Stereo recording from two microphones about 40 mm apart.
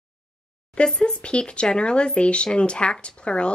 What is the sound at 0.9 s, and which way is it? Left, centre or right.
Speech, left.